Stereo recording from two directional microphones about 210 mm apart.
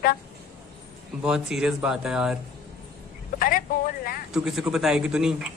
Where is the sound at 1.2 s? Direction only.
Centre (ahead or behind).